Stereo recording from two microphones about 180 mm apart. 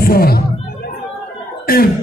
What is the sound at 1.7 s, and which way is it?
Cough, 55° left (ahead or behind).